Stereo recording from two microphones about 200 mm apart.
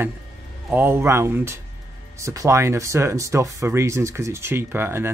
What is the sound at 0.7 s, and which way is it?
Speech, 10° right (ahead or behind).